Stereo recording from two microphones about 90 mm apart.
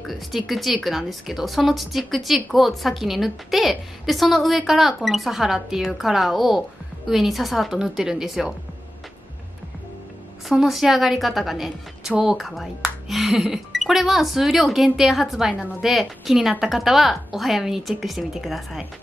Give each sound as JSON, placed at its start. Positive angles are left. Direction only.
{"t": 0.0, "sound": "a woman's voice", "side_deg": 0}
{"t": 10.5, "sound": "a woman's voice", "side_deg": -5}